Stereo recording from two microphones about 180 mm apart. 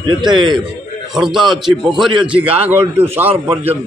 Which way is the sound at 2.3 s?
30° right (ahead or behind).